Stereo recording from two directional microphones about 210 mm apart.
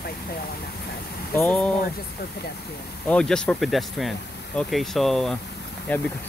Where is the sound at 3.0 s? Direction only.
5° left (ahead or behind).